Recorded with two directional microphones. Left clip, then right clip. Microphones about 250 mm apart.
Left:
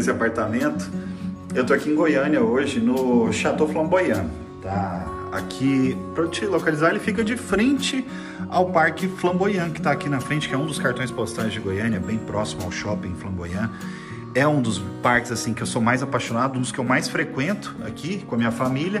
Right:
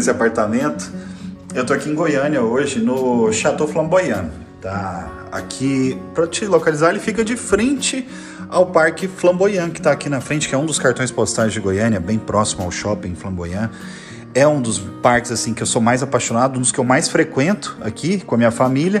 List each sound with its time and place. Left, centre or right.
0.0 s a man's voice: centre
5.3 s a man's voice: centre